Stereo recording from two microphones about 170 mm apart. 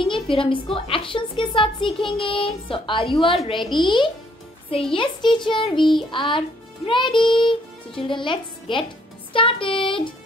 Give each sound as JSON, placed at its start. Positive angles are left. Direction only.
{"t": 0.0, "sound": "a woman's voice", "side_deg": 30}